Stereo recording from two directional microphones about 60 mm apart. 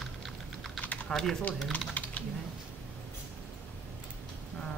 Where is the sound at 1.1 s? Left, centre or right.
Centre.